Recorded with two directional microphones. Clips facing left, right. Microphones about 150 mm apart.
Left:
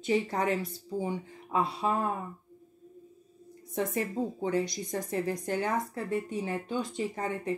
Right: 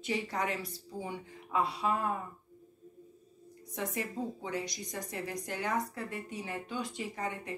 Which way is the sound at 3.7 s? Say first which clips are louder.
Left 6 dB; 35° left (ahead or behind).